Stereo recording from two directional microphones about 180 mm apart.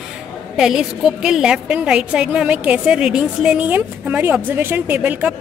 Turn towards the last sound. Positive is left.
turn(degrees=-10)  # may be behind; listen again after turning